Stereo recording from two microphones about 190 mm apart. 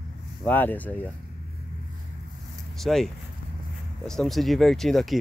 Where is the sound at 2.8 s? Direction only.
Centre (ahead or behind).